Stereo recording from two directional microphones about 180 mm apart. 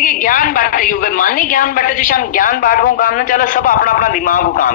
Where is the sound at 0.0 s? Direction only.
50° left (ahead or behind).